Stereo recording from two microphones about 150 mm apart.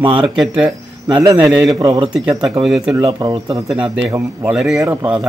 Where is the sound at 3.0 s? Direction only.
30° right (ahead or behind).